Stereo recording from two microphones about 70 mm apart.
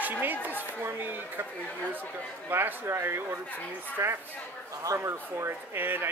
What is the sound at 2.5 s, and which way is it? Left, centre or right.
Speech, right.